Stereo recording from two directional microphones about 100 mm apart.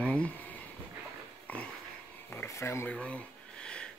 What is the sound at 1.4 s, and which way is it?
Pig, 15° left (ahead or behind).